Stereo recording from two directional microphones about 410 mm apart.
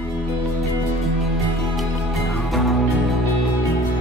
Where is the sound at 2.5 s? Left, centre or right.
Centre.